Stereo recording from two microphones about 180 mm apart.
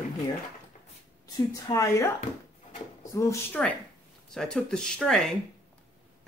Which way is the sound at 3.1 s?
15° left (ahead or behind).